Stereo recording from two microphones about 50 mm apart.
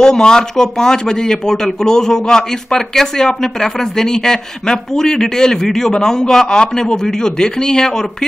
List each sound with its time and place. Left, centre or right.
0.0 s speech: centre